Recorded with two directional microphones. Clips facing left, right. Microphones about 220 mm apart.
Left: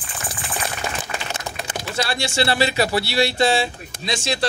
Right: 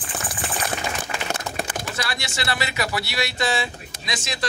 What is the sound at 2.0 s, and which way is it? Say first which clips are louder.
Speech: left 12 dB; 30° left (ahead or behind).